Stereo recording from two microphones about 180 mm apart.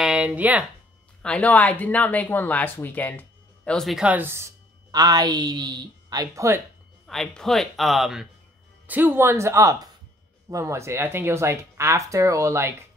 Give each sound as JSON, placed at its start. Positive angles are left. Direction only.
{"t": 0.0, "sound": "speech", "side_deg": -5}
{"t": 1.2, "sound": "speech", "side_deg": 5}
{"t": 7.1, "sound": "speech", "side_deg": 0}